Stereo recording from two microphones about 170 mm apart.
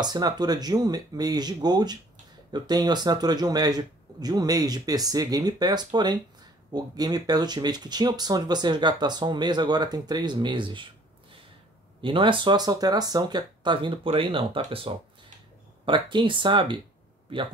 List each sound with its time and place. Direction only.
0.0 s speech: 25° right (ahead or behind)
12.0 s speech: 30° right (ahead or behind)